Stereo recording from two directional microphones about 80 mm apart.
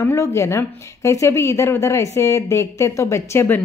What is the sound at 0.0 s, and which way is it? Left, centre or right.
Speech, left.